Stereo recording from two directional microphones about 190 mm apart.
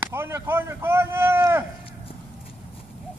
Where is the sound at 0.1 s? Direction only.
10° right (ahead or behind).